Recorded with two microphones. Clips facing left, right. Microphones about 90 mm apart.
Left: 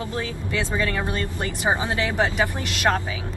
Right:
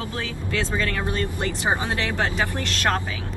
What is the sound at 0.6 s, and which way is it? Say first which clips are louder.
Speech: left 1 dB; 15° left (ahead or behind).